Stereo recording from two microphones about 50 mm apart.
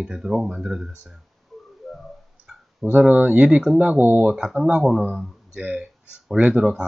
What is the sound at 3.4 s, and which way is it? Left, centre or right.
Speech, centre.